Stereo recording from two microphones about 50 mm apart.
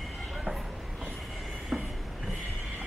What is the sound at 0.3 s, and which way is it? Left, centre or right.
Train, centre.